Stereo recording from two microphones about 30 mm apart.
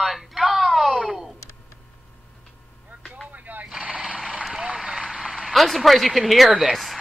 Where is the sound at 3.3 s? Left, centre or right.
Right.